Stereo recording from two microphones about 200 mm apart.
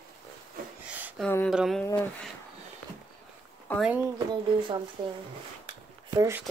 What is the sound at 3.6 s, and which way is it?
Speech, 5° left (ahead or behind).